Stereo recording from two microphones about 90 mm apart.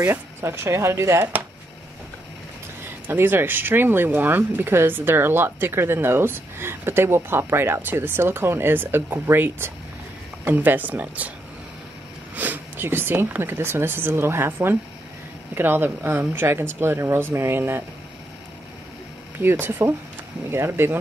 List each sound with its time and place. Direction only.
0.0 s speech: 25° right (ahead or behind)
3.1 s speech: 25° right (ahead or behind)
12.4 s speech: 20° right (ahead or behind)
19.4 s speech: 25° right (ahead or behind)